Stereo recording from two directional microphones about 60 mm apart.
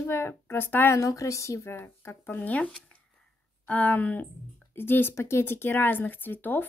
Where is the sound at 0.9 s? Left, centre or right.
Left.